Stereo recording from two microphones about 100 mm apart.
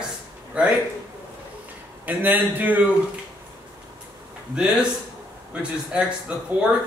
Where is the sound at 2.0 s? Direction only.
15° right (ahead or behind).